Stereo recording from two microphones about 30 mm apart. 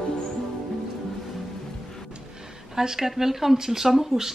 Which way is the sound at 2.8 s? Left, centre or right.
Centre.